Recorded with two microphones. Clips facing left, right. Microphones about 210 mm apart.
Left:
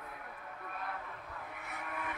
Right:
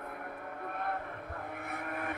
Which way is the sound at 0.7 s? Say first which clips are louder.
Right 6 dB; 55° right (ahead or behind).